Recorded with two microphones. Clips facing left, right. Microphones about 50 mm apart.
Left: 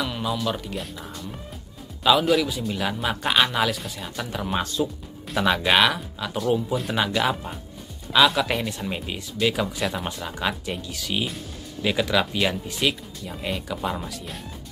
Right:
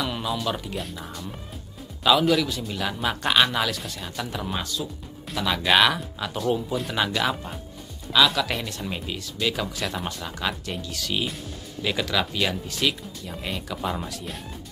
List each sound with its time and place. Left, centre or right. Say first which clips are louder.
0.0 s a man's voice: left 1 dB; centre
4.8 s a man's voice: left 7 dB; centre